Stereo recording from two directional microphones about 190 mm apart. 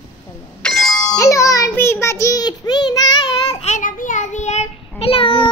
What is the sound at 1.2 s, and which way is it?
A child's voice, 15° left (ahead or behind).